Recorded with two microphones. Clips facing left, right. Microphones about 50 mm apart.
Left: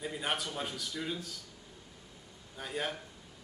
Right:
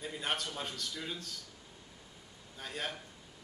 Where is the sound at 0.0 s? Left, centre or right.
Centre.